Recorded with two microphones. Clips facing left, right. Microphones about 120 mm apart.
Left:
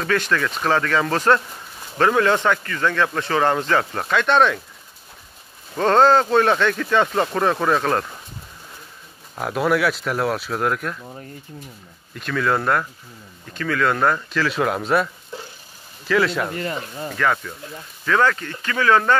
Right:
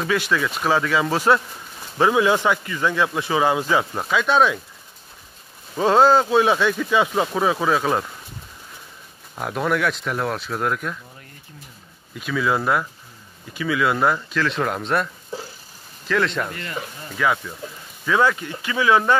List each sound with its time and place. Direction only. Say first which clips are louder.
0.0 s speech: even; 10° right (ahead or behind)
5.8 s speech: even; 10° right (ahead or behind)
9.3 s speech: left 3 dB; 5° left (ahead or behind)
12.1 s speech: left 1 dB; 5° right (ahead or behind)
16.5 s speech: left 4 dB; 35° left (ahead or behind)
18.0 s speech: even; 15° right (ahead or behind)